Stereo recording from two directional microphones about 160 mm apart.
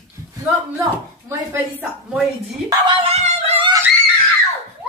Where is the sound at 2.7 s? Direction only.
30° right (ahead or behind).